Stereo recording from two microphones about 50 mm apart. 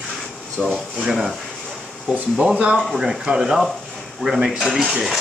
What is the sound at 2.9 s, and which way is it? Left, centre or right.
Speech, centre.